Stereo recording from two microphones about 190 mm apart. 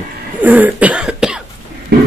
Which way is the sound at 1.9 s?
55° right (ahead or behind).